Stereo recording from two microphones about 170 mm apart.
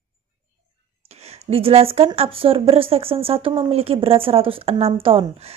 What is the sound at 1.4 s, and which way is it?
Speech, 35° right (ahead or behind).